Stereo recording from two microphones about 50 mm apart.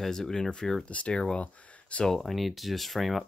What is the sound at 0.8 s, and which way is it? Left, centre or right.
Speech, left.